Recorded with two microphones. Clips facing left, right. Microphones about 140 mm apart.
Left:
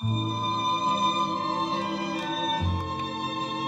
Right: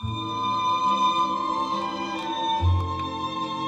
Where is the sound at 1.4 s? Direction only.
45° right (ahead or behind).